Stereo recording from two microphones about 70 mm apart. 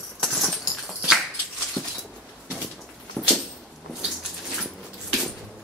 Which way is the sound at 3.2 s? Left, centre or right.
Centre.